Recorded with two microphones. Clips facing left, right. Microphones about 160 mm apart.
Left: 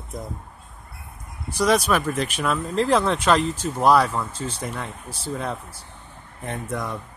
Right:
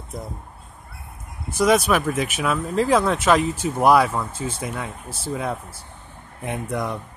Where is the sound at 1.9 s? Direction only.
5° right (ahead or behind).